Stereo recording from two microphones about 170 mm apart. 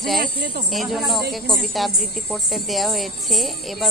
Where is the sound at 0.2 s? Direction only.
60° right (ahead or behind).